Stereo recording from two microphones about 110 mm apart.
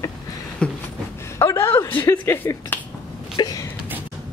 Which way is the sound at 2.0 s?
20° left (ahead or behind).